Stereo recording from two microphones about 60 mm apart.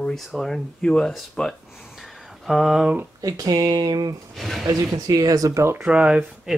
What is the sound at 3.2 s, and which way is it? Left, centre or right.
Speech, right.